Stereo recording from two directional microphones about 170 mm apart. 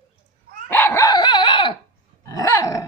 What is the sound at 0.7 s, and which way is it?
Dog, 15° left (ahead or behind).